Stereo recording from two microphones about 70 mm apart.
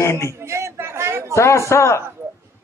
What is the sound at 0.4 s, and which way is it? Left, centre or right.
Chatter, right.